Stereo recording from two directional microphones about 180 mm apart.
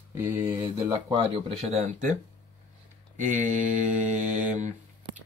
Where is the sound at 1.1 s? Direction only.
30° right (ahead or behind).